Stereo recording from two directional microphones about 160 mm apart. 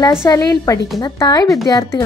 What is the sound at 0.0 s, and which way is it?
Speech, 20° left (ahead or behind).